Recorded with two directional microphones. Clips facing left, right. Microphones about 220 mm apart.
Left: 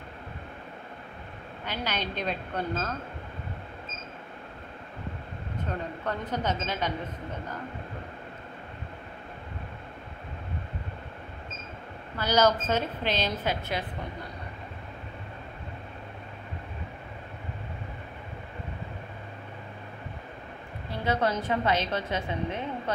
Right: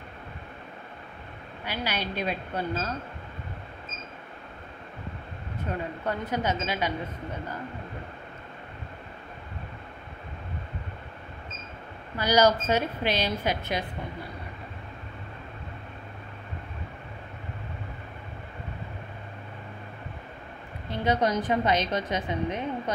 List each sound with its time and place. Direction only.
1.7 s a woman's voice: 10° right (ahead or behind)
6.0 s a woman's voice: 10° right (ahead or behind)
12.2 s a woman's voice: 10° right (ahead or behind)
20.9 s a woman's voice: 20° right (ahead or behind)